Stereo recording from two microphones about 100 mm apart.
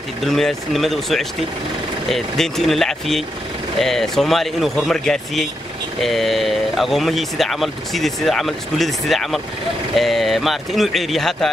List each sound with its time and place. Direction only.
0.2 s speech: 5° left (ahead or behind)